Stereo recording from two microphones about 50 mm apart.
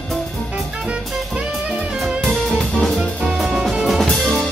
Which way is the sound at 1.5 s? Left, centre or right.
Centre.